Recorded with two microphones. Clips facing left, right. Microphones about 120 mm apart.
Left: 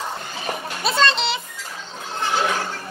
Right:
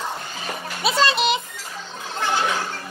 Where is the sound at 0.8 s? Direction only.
Centre (ahead or behind).